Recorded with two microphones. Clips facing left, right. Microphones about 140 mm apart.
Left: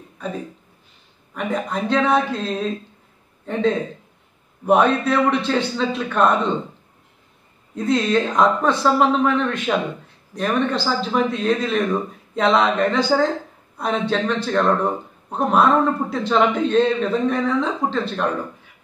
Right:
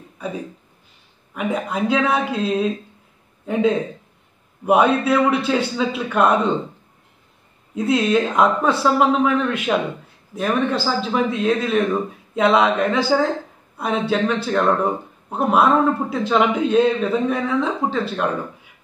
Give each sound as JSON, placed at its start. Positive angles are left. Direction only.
{"t": 0.2, "sound": "a man's voice", "side_deg": -10}
{"t": 7.7, "sound": "speech", "side_deg": -5}